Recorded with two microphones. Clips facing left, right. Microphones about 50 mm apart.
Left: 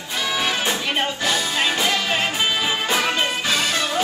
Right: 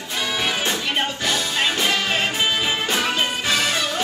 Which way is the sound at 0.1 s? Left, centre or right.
Centre.